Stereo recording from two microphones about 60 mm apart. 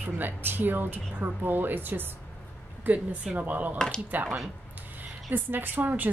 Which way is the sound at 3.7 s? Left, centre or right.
Centre.